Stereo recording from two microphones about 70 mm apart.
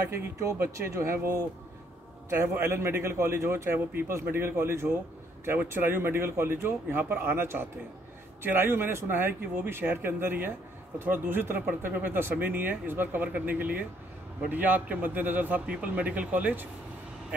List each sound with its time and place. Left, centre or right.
0.1 s a man's voice: right